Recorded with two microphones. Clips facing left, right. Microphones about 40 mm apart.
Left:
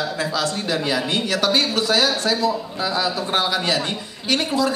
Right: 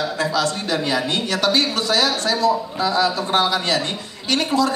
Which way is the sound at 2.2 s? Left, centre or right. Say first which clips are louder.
Right 2 dB; centre.